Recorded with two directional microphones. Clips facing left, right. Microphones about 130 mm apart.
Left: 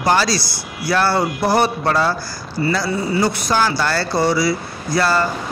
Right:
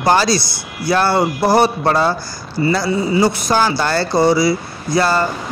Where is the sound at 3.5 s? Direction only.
25° right (ahead or behind).